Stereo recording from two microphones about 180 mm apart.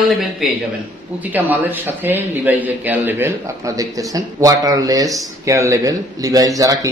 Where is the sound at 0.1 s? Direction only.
Centre (ahead or behind).